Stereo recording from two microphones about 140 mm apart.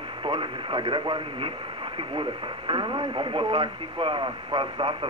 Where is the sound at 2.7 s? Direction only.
35° right (ahead or behind).